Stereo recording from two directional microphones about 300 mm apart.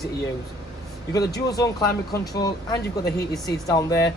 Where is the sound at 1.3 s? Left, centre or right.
Centre.